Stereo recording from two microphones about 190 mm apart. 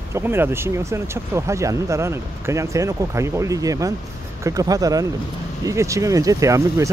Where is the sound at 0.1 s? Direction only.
10° right (ahead or behind).